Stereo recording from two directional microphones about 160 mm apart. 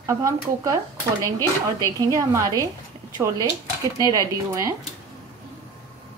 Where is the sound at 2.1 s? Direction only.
20° right (ahead or behind).